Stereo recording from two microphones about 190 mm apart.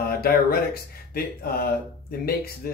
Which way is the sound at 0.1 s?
55° left (ahead or behind).